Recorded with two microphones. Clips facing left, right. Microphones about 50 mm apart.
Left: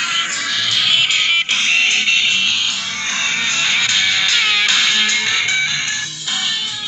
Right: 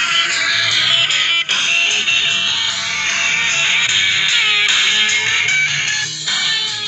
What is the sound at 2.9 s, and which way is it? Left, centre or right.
Music, right.